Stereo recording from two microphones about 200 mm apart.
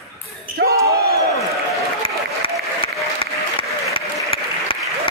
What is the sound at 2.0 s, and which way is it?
Applause, 25° left (ahead or behind).